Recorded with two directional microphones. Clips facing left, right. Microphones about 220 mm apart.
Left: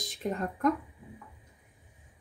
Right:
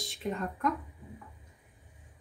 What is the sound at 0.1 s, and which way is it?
Speech, 45° left (ahead or behind).